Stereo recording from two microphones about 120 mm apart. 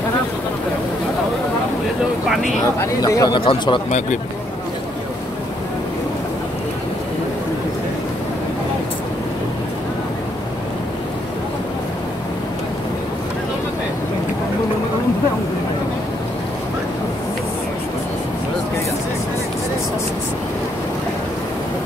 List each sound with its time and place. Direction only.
2.2 s speech: centre (ahead or behind)
3.0 s speech: 30° left (ahead or behind)
3.3 s speech: 45° left (ahead or behind)